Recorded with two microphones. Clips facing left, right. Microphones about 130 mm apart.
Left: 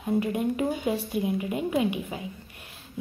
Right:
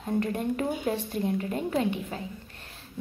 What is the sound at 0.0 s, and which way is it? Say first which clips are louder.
Speech: left 2 dB; 10° left (ahead or behind).